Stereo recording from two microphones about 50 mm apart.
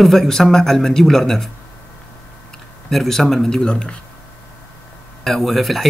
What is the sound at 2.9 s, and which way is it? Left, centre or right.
Speech, centre.